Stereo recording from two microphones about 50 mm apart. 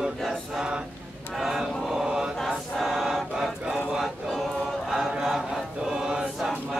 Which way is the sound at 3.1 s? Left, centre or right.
Centre.